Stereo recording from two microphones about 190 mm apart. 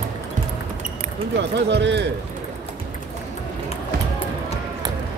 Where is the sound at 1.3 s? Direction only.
65° right (ahead or behind).